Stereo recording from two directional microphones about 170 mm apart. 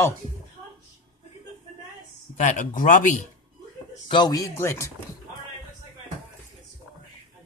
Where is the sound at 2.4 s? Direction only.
45° left (ahead or behind).